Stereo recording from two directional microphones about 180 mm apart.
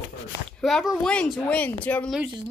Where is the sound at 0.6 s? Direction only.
Centre (ahead or behind).